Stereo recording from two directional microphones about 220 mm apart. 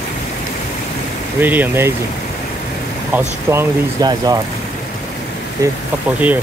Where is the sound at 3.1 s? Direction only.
10° right (ahead or behind).